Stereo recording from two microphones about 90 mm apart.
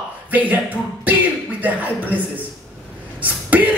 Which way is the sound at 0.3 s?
20° right (ahead or behind).